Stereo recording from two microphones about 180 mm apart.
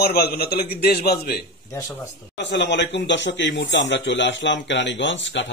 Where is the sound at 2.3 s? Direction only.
75° left (ahead or behind).